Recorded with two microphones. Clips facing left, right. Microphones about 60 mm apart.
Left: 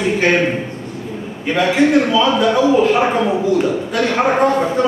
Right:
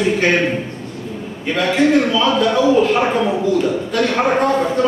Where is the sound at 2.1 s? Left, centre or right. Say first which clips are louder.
Left 1 dB; centre.